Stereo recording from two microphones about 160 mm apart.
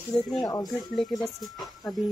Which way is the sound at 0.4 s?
25° left (ahead or behind).